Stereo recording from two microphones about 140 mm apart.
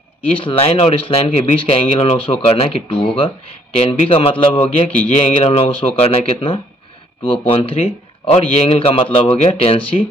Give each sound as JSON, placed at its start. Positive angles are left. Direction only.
{"t": 0.4, "sound": "speech", "side_deg": 40}